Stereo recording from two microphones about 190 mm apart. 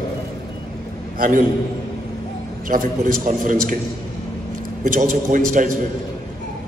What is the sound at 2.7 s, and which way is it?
A man's voice, 40° right (ahead or behind).